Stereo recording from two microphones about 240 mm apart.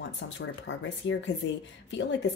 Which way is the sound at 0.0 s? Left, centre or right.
Left.